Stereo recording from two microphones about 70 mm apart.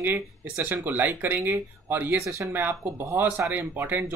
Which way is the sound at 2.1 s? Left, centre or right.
Right.